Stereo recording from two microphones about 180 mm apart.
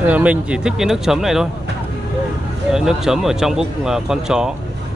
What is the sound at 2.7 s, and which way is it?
Speech, 5° right (ahead or behind).